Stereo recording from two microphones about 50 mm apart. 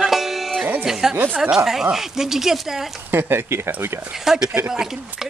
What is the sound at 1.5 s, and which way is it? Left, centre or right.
Speech, centre.